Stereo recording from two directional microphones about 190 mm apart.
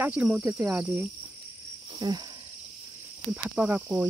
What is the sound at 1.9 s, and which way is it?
Speech, 20° right (ahead or behind).